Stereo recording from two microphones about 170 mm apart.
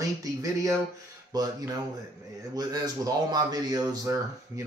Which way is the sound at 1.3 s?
20° right (ahead or behind).